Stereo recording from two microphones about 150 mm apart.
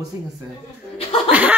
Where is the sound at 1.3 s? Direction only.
10° right (ahead or behind).